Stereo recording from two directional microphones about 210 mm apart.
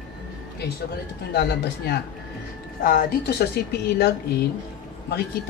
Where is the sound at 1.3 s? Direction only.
50° left (ahead or behind).